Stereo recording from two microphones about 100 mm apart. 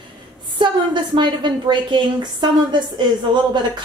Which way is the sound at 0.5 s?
50° right (ahead or behind).